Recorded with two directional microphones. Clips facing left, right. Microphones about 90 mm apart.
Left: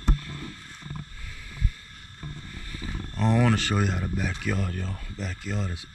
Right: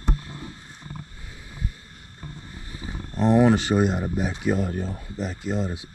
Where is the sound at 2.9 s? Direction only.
25° right (ahead or behind).